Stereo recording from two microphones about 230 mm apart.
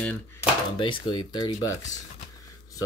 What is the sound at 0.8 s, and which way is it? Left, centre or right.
Speech, left.